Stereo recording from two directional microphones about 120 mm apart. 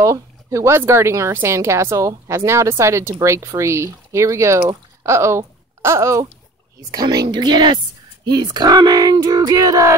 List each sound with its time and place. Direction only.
0.0 s speech: 25° right (ahead or behind)